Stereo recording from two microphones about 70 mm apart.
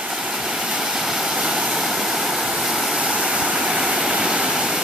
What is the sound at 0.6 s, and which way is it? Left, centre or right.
Waterfall, centre.